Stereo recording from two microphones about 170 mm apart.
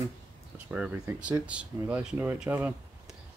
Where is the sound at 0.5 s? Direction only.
5° right (ahead or behind).